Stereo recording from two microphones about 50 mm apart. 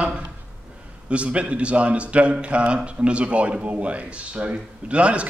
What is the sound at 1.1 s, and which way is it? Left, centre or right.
A man's voice, right.